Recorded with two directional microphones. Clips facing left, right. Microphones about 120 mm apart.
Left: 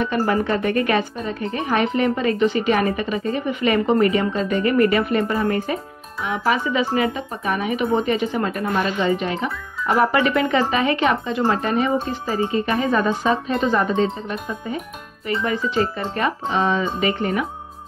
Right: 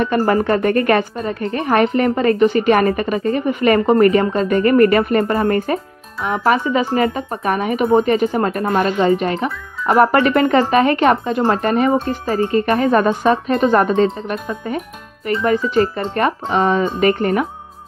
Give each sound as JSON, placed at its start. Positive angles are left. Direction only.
{"t": 0.0, "sound": "speech", "side_deg": -50}
{"t": 15.2, "sound": "speech", "side_deg": -50}